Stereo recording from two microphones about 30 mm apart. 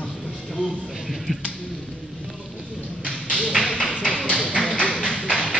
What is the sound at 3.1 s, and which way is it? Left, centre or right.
Tap, left.